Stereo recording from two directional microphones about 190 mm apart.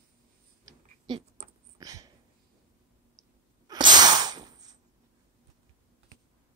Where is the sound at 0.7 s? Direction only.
25° right (ahead or behind).